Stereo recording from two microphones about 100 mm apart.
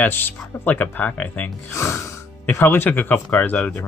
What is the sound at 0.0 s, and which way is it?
Speech, 20° left (ahead or behind).